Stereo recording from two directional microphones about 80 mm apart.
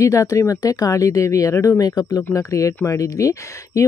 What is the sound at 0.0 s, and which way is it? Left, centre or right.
Speech, left.